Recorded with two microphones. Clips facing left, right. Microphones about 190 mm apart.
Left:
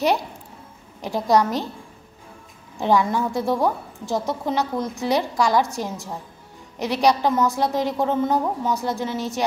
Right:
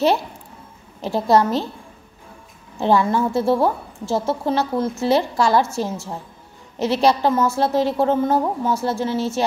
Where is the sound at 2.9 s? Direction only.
15° left (ahead or behind).